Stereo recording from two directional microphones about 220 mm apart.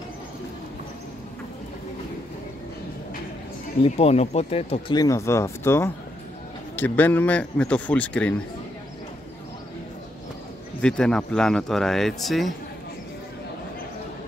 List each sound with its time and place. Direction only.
3.8 s speech: 30° left (ahead or behind); by 8.4 s 5° left (ahead or behind)
10.8 s speech: 5° left (ahead or behind)